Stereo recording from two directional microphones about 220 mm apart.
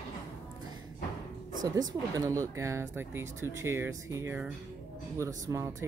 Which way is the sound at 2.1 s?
15° right (ahead or behind).